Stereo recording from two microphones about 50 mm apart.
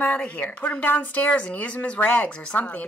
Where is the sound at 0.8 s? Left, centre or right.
Left.